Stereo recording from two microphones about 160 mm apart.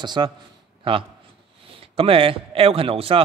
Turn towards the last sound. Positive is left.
turn(degrees=-35)  # may be behind; listen again after turning